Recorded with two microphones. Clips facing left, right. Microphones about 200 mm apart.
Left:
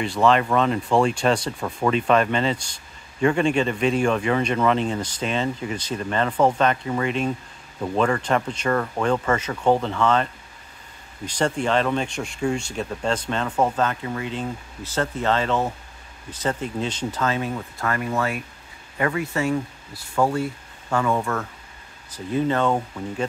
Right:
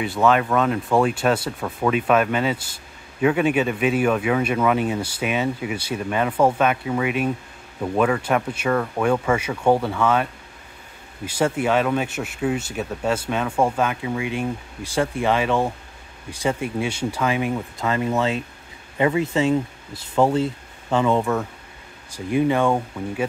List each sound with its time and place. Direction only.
0.0 s speech: 5° right (ahead or behind)